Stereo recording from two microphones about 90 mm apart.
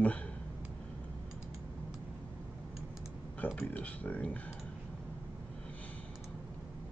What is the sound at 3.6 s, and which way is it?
Speech, 15° left (ahead or behind).